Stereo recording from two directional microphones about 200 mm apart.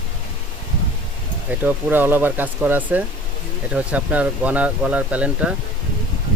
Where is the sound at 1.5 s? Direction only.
10° right (ahead or behind).